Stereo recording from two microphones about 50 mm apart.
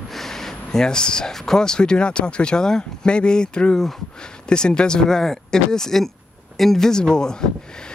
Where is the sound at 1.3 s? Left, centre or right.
Centre.